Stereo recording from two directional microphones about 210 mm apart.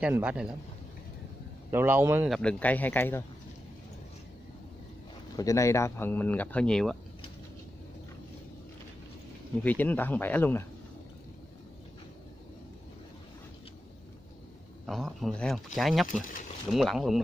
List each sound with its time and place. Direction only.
0.0 s a man's voice: 5° right (ahead or behind)
1.7 s a man's voice: 10° right (ahead or behind); by 3.3 s 10° left (ahead or behind)
5.3 s speech: 15° left (ahead or behind)
9.6 s speech: 10° left (ahead or behind)
14.9 s a man's voice: centre (ahead or behind)
16.1 s speech: 40° left (ahead or behind)
16.7 s a man's voice: centre (ahead or behind)